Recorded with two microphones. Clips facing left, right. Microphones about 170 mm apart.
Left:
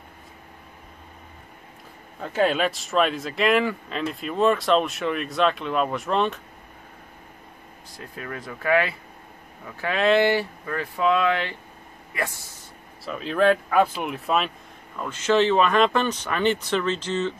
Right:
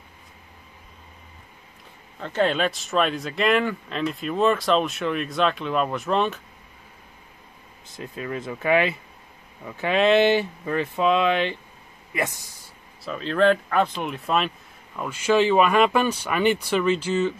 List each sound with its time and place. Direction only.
2.1 s speech: 5° left (ahead or behind)
7.9 s speech: 20° right (ahead or behind)
13.0 s speech: 5° left (ahead or behind)
15.0 s speech: 10° right (ahead or behind)